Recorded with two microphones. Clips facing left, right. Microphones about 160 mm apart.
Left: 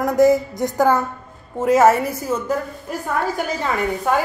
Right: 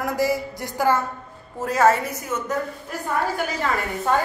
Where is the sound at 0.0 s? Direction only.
20° left (ahead or behind).